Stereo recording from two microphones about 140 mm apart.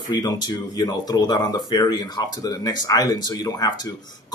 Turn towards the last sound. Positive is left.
turn(degrees=30)  # may be behind; listen again after turning